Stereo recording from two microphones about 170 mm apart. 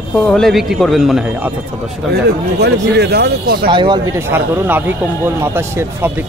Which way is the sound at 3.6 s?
30° right (ahead or behind).